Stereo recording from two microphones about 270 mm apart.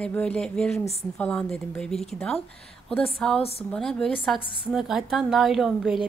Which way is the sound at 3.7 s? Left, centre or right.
Centre.